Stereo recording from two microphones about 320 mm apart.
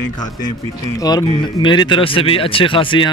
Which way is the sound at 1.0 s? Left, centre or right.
Centre.